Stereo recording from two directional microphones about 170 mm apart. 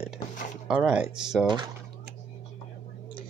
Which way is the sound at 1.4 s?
25° right (ahead or behind).